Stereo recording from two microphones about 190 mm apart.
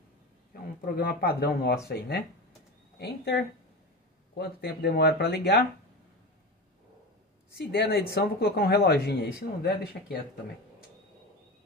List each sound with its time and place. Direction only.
0.5 s speech: 50° left (ahead or behind)
7.5 s speech: 55° left (ahead or behind)